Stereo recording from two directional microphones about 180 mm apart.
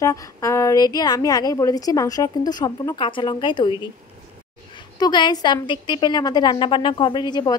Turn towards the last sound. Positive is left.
turn(degrees=25)  # may be behind; listen again after turning